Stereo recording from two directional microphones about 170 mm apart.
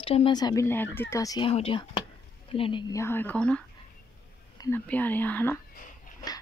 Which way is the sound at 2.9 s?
15° left (ahead or behind).